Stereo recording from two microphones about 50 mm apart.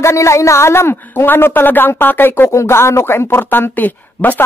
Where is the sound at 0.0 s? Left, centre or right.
Left.